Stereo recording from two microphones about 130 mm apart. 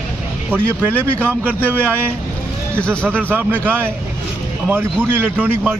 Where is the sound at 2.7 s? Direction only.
10° left (ahead or behind).